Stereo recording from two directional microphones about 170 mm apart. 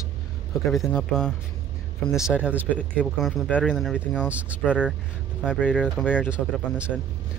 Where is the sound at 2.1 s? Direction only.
15° left (ahead or behind).